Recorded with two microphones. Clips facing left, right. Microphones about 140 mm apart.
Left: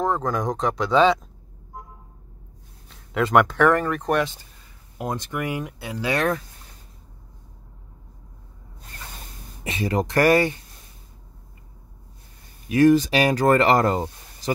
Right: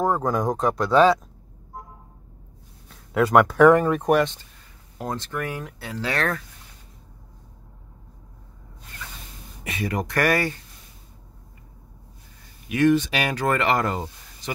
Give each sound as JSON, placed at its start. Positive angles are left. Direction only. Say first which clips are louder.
{"t": 0.0, "sound": "speech", "louder": "right 1 dB", "side_deg": -5}
{"t": 2.9, "sound": "speech", "louder": "right 1 dB", "side_deg": -5}
{"t": 3.7, "sound": "speech", "louder": "right 3 dB", "side_deg": -20}
{"t": 4.1, "sound": "speech", "louder": "right 3 dB", "side_deg": 0}
{"t": 4.9, "sound": "speech", "louder": "left 1 dB", "side_deg": 15}
{"t": 9.6, "sound": "speech", "louder": "left 3 dB", "side_deg": 30}
{"t": 12.6, "sound": "speech", "louder": "left 3 dB", "side_deg": 35}